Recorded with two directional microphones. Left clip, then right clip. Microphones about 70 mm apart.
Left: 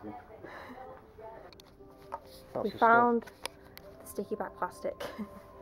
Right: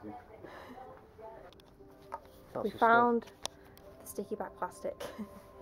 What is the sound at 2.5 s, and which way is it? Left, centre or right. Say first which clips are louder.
Speech: left 2 dB; left.